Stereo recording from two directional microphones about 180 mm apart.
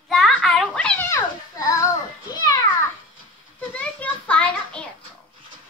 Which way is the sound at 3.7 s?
10° left (ahead or behind).